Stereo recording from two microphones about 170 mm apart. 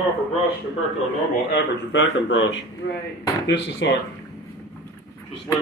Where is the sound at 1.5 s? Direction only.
90° left.